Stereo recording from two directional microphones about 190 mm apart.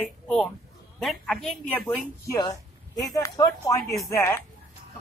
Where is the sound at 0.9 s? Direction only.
Centre (ahead or behind).